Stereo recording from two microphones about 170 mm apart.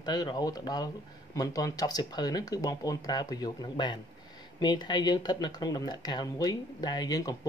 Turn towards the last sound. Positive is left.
turn(degrees=20)  # may be behind; listen again after turning